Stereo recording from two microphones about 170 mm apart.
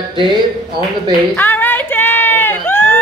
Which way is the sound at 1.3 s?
10° left (ahead or behind).